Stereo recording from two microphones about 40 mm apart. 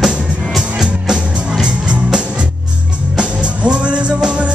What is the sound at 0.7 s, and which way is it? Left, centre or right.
Music, centre.